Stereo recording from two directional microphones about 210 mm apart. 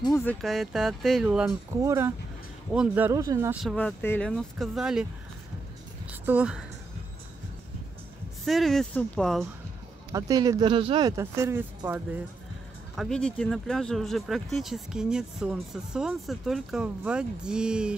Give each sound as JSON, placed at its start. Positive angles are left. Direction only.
{"t": 0.0, "sound": "speech", "side_deg": 10}
{"t": 1.7, "sound": "speech", "side_deg": -15}
{"t": 3.6, "sound": "speech", "side_deg": 5}
{"t": 6.2, "sound": "speech", "side_deg": -5}
{"t": 8.5, "sound": "speech", "side_deg": 0}
{"t": 10.1, "sound": "speech", "side_deg": -15}